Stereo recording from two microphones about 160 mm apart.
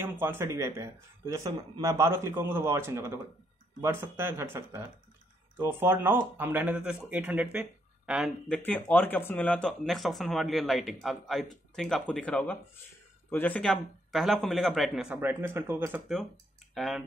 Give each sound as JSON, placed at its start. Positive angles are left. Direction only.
{"t": 0.0, "sound": "speech", "side_deg": -15}
{"t": 8.6, "sound": "speech", "side_deg": 10}
{"t": 15.1, "sound": "speech", "side_deg": -15}
{"t": 16.7, "sound": "speech", "side_deg": 0}